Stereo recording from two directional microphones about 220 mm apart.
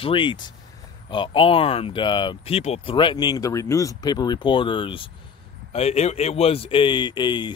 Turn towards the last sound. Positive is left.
turn(degrees=20)  # may be behind; listen again after turning